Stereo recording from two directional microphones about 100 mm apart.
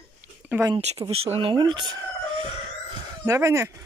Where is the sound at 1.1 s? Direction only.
80° right.